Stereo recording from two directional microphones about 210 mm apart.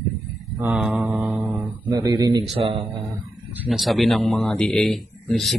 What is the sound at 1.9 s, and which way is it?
Speech, 20° right (ahead or behind).